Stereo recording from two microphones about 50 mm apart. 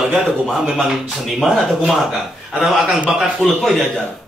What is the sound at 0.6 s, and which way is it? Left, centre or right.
Speech, centre.